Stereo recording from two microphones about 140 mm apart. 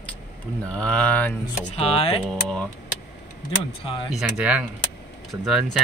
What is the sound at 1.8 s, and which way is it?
Speech, 45° left (ahead or behind).